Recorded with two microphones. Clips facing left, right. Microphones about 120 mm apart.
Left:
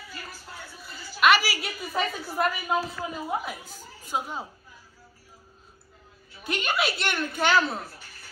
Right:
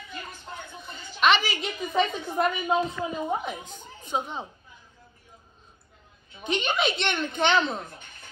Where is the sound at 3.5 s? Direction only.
5° left (ahead or behind).